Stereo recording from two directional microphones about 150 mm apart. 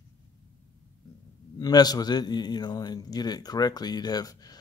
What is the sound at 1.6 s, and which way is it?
A man's voice, 25° left (ahead or behind).